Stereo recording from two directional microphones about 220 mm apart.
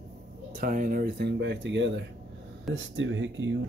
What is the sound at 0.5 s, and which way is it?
Speech, 40° right (ahead or behind).